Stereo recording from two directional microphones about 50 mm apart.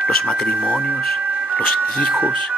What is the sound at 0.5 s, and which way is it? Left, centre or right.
Speech, right.